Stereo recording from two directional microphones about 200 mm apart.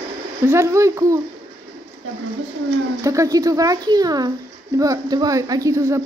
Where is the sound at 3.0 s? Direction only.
15° right (ahead or behind).